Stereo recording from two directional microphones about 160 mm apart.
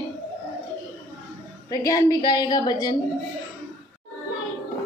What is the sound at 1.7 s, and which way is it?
A woman's voice, 20° left (ahead or behind).